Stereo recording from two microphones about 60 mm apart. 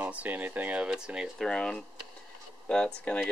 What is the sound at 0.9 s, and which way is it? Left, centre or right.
Speech, centre.